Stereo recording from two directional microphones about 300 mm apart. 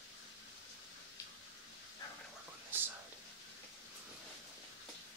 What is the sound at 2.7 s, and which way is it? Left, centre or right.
Whispering, centre.